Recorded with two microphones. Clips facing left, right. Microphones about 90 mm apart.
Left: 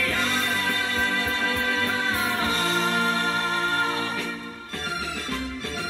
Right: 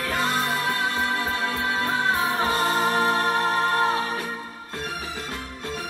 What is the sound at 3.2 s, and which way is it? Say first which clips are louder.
Music: right 3 dB; 20° right (ahead or behind).